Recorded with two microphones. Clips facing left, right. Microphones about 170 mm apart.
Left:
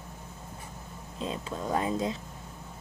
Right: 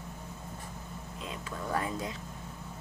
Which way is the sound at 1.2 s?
25° left (ahead or behind).